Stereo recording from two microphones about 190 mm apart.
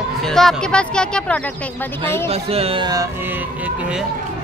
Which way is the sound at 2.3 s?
30° right (ahead or behind).